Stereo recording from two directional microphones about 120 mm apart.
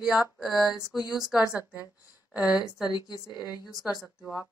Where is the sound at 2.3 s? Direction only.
10° right (ahead or behind).